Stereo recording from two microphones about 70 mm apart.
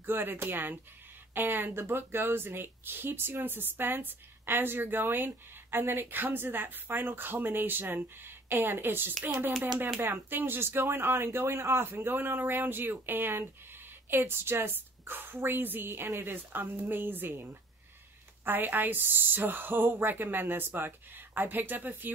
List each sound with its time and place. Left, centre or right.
0.0 s a woman's voice: right